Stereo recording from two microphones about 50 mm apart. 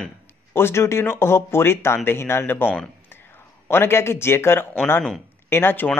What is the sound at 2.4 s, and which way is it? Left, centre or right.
Speech, left.